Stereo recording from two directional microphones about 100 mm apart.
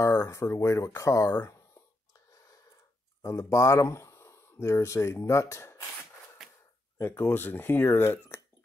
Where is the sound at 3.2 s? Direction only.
30° left (ahead or behind).